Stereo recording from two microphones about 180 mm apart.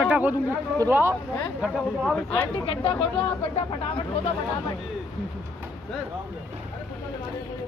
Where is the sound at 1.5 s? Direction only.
Centre (ahead or behind).